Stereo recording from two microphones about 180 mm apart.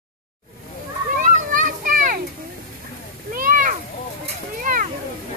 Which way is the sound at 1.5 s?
50° right (ahead or behind).